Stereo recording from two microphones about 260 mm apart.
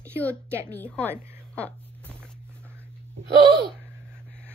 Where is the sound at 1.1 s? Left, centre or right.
Centre.